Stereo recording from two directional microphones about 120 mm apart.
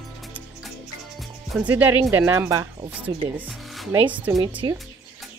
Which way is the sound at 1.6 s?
15° right (ahead or behind).